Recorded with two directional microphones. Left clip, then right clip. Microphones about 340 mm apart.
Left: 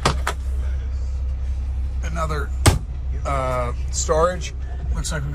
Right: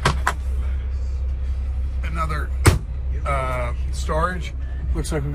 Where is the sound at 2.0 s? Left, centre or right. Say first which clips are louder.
Left 1 dB; centre.